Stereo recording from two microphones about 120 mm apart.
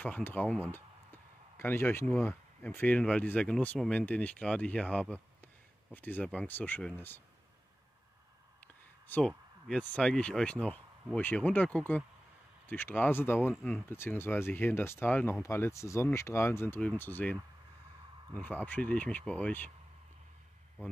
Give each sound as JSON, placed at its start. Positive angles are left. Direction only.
{"t": 0.0, "sound": "speech", "side_deg": 15}
{"t": 9.0, "sound": "speech", "side_deg": 15}